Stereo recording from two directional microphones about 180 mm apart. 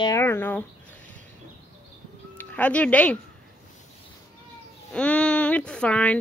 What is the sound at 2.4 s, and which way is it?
Speech, 10° left (ahead or behind).